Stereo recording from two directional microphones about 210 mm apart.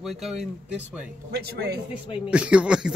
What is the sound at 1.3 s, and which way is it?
Speech, 50° right (ahead or behind).